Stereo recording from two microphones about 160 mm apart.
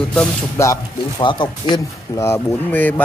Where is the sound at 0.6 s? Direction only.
20° left (ahead or behind).